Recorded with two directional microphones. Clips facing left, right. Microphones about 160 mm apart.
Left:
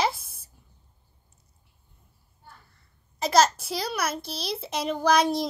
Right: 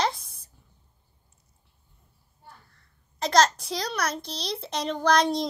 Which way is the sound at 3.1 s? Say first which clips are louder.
Even; 5° left (ahead or behind).